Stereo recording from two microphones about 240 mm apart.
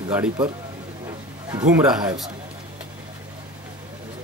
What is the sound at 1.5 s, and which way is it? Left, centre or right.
Speech, centre.